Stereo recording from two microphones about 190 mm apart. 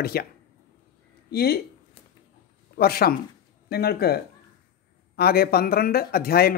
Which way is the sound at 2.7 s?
55° left (ahead or behind).